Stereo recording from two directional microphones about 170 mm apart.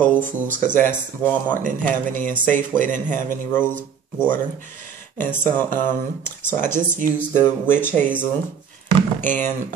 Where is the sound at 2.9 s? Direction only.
15° left (ahead or behind).